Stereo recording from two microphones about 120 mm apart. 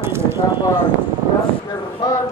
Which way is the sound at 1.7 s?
35° left (ahead or behind).